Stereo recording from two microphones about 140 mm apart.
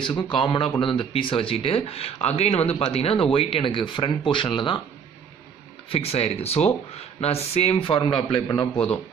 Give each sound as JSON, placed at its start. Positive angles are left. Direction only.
{"t": 0.0, "sound": "a man's voice", "side_deg": 35}
{"t": 5.9, "sound": "speech", "side_deg": 45}